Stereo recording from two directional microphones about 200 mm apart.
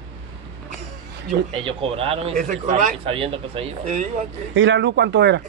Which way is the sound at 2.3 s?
40° right (ahead or behind).